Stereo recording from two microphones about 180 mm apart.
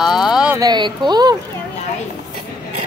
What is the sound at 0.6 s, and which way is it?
Speech, 25° right (ahead or behind).